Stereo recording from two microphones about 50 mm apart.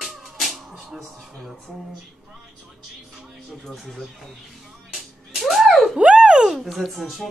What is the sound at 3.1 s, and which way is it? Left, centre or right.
Music, centre.